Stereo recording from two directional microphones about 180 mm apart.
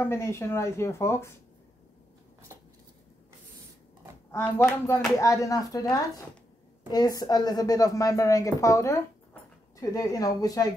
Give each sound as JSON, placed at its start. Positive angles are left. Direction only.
{"t": 0.0, "sound": "speech", "side_deg": 15}
{"t": 4.3, "sound": "a woman's voice", "side_deg": 15}